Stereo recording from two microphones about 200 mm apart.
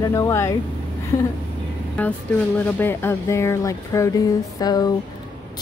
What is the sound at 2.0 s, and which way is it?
A woman's voice, 5° left (ahead or behind).